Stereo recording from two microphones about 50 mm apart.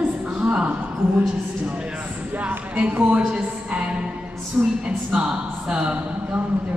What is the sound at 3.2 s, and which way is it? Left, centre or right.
A man's voice, centre.